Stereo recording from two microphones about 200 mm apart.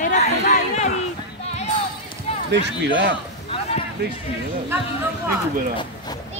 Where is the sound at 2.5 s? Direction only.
60° right (ahead or behind).